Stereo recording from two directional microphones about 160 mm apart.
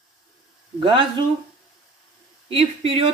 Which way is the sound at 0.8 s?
30° right (ahead or behind).